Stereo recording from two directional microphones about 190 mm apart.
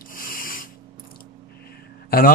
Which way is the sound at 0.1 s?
45° left (ahead or behind).